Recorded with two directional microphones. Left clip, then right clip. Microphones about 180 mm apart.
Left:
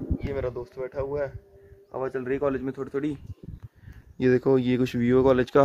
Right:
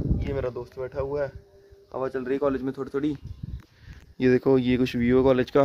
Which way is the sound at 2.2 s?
15° right (ahead or behind).